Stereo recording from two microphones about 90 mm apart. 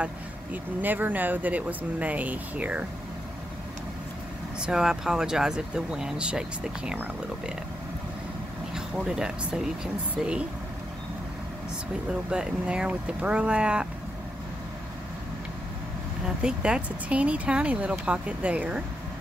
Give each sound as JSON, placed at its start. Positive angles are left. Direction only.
{"t": 0.0, "sound": "speech", "side_deg": -20}
{"t": 4.6, "sound": "speech", "side_deg": -10}
{"t": 8.7, "sound": "speech", "side_deg": -5}
{"t": 12.1, "sound": "speech", "side_deg": -10}
{"t": 16.4, "sound": "speech", "side_deg": -10}